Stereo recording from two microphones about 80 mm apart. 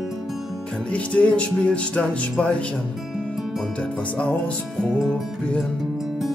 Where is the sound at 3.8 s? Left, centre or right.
Centre.